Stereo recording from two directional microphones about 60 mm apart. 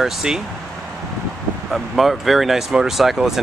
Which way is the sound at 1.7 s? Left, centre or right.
Centre.